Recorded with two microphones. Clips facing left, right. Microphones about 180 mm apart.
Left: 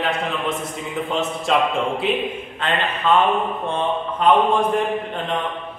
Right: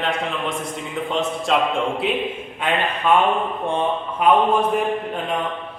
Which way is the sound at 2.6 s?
10° right (ahead or behind).